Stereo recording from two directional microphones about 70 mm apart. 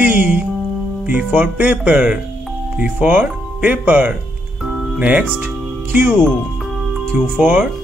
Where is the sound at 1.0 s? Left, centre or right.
Right.